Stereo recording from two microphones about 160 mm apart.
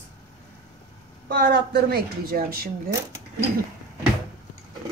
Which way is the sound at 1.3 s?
90° right.